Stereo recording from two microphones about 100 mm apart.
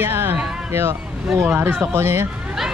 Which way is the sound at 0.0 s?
20° right (ahead or behind).